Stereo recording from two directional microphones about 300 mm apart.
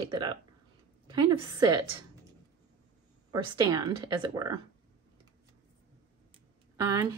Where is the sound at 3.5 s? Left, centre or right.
Centre.